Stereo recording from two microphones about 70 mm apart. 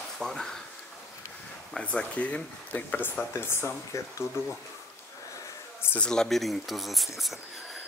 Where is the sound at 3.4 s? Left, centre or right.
Left.